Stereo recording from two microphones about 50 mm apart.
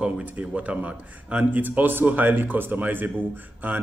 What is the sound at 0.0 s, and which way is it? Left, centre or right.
Speech, right.